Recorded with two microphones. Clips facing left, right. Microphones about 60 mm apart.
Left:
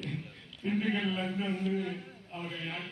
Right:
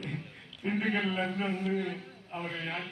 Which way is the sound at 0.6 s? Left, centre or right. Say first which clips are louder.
Right 1 dB; right.